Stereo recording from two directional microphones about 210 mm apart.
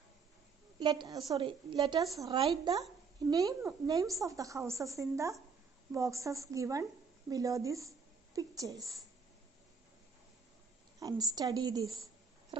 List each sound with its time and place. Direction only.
0.7 s a woman's voice: 20° right (ahead or behind)
11.0 s a woman's voice: 15° right (ahead or behind)